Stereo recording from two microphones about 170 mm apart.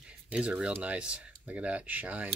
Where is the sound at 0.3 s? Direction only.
5° right (ahead or behind).